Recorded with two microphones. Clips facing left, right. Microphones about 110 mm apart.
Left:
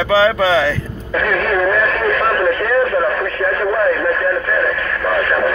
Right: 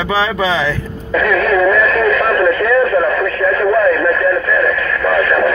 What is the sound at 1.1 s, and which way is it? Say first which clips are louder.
Radio: right 3 dB; 30° left (ahead or behind).